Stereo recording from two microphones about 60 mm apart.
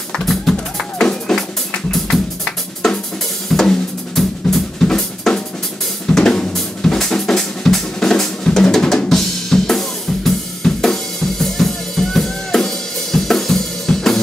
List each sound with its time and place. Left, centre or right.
0.1 s music: centre
1.9 s drum kit: centre
6.5 s drum: centre